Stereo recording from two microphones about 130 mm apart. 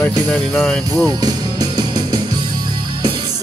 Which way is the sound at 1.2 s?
30° right (ahead or behind).